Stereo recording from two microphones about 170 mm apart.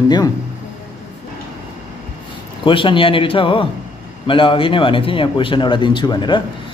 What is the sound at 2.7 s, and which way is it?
A man's voice, 30° left (ahead or behind).